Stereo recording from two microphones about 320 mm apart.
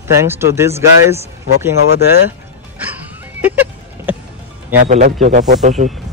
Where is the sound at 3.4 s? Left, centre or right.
Centre.